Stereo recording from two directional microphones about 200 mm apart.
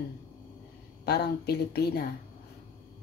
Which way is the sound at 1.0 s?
55° left (ahead or behind).